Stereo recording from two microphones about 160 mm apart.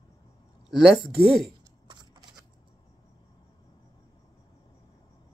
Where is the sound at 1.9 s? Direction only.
30° right (ahead or behind).